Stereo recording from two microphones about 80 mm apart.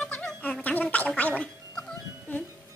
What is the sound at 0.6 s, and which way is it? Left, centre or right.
Gargling, left.